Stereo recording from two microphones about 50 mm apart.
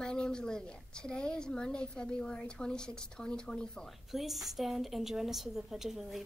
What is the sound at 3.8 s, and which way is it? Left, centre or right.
A woman's voice, centre.